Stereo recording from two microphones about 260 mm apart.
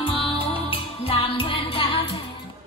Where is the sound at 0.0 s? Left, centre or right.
Left.